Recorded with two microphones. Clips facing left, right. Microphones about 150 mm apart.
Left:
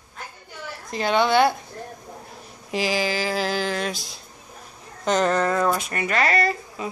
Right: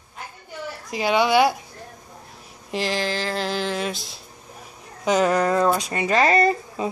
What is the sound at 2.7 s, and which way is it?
Speech, 5° left (ahead or behind).